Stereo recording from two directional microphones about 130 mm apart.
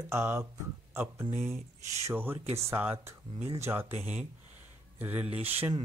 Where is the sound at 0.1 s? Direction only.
20° right (ahead or behind).